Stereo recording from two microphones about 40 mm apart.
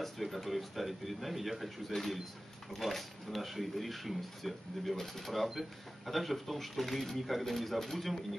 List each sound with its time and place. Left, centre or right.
0.0 s speech: centre